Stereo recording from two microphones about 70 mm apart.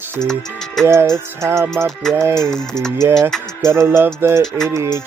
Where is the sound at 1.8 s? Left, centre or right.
Right.